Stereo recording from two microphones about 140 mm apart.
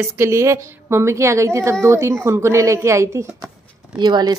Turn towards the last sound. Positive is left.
turn(degrees=-30)  # may be behind; listen again after turning